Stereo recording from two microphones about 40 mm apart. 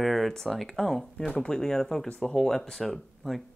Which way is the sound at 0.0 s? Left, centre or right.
Centre.